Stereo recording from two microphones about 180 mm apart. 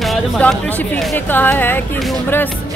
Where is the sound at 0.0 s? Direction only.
Centre (ahead or behind).